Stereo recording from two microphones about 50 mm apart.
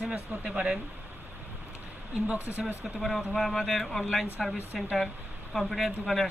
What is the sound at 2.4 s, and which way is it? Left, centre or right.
Speech, right.